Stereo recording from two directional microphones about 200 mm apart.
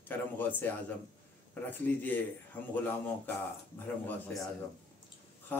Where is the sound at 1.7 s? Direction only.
10° left (ahead or behind).